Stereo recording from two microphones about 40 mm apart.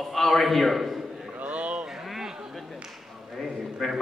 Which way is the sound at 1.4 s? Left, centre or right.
Right.